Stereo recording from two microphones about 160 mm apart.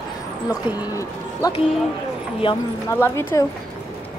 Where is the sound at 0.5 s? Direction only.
20° left (ahead or behind).